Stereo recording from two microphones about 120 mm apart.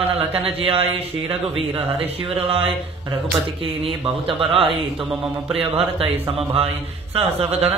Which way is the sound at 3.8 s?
50° right (ahead or behind).